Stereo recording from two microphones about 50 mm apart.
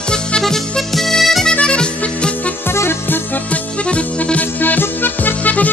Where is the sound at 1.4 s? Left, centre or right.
Left.